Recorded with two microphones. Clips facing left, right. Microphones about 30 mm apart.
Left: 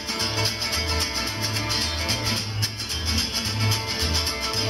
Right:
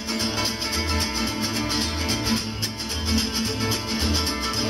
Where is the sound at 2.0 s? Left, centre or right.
Centre.